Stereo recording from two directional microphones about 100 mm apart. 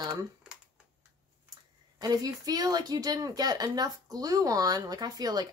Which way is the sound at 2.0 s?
40° right (ahead or behind).